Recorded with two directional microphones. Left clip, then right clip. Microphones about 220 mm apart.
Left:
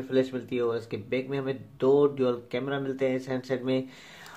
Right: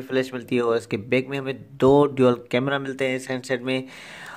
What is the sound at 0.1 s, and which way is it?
Speech, 45° right (ahead or behind).